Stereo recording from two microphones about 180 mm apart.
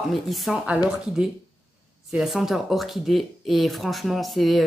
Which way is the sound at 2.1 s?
Centre (ahead or behind).